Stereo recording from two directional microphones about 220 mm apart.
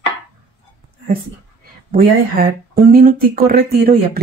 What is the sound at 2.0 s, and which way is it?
Speech, 45° right (ahead or behind).